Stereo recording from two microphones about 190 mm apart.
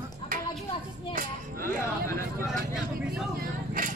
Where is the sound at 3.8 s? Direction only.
45° right (ahead or behind).